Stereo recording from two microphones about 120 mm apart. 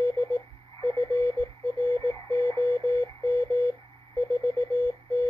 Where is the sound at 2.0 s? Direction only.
30° left (ahead or behind).